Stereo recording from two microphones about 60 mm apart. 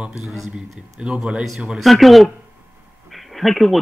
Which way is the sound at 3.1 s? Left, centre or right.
Centre.